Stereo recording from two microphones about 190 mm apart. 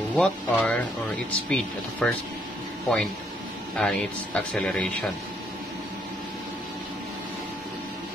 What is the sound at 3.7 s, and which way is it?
Speech, 5° left (ahead or behind).